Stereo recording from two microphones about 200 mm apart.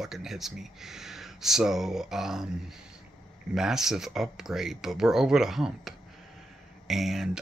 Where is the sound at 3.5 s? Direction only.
Centre (ahead or behind).